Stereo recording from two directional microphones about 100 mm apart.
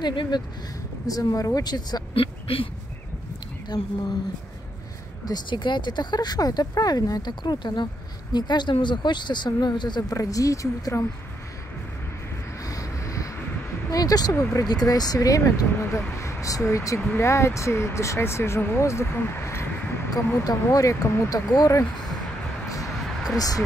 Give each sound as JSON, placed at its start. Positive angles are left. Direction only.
{"t": 0.0, "sound": "speech", "side_deg": 50}
{"t": 1.0, "sound": "speech", "side_deg": 35}
{"t": 2.1, "sound": "speech", "side_deg": 65}
{"t": 3.7, "sound": "speech", "side_deg": 40}
{"t": 5.2, "sound": "speech", "side_deg": 45}
{"t": 10.1, "sound": "speech", "side_deg": 35}
{"t": 12.6, "sound": "wind noise", "side_deg": 35}
{"t": 13.8, "sound": "speech", "side_deg": 40}
{"t": 23.3, "sound": "speech", "side_deg": 40}